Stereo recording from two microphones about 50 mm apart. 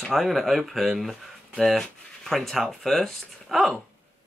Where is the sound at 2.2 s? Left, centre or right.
Centre.